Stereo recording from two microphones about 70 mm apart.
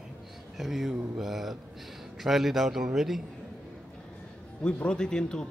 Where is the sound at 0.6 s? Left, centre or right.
Centre.